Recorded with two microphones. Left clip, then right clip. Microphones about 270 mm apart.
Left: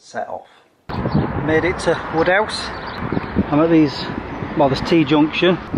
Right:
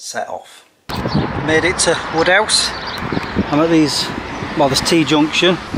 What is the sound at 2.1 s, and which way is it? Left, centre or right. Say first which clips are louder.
Speech: right 3 dB; centre.